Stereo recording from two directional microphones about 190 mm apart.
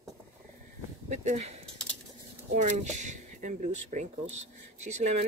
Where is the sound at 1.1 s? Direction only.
40° right (ahead or behind).